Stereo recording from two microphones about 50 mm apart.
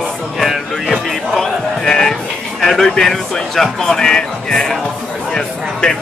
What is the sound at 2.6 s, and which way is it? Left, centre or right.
Speech, centre.